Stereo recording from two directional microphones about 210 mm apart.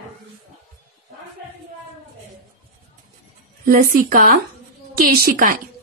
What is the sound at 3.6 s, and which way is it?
A woman's voice, 45° right (ahead or behind).